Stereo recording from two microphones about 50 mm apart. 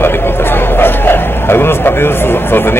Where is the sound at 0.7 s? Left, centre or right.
Left.